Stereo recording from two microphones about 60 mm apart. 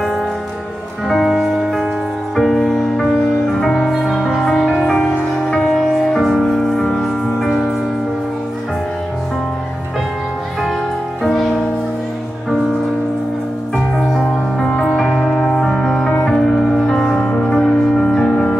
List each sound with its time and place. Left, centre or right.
1.0 s music: centre
11.2 s music: centre
13.7 s music: centre
16.1 s music: centre